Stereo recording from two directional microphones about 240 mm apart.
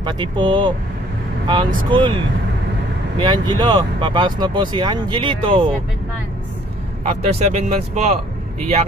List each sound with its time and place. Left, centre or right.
0.0 s speech: centre
1.9 s speech: centre
7.1 s speech: right